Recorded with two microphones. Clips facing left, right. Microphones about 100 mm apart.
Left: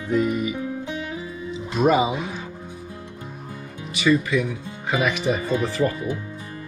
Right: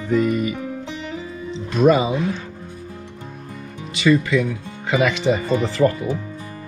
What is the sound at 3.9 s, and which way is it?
Speech, 15° left (ahead or behind).